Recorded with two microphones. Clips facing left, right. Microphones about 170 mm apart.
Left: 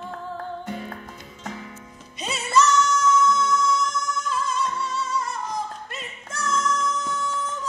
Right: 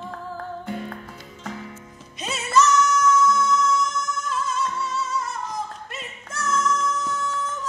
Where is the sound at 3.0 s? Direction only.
25° left (ahead or behind).